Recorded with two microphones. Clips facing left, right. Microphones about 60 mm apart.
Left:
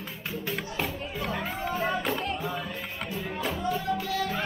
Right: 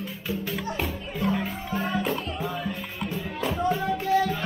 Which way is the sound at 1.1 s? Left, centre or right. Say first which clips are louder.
Right 5 dB; centre.